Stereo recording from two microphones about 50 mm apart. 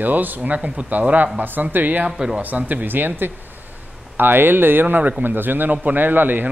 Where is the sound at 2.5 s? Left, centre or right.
Right.